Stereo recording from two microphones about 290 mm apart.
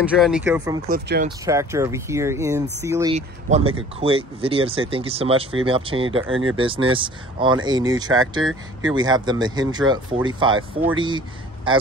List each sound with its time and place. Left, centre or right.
0.0 s speech: centre
0.8 s speech: right
1.4 s speech: centre
3.2 s speech: right
6.0 s speech: right
6.5 s speech: centre